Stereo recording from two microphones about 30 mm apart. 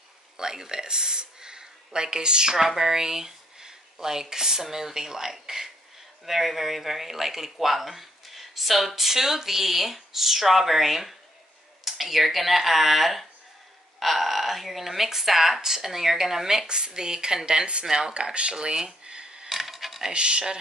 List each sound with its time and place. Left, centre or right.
0.4 s speech: right
2.5 s speech: centre
16.6 s speech: right
19.0 s a sound: right
19.5 s a sound: centre
20.1 s speech: right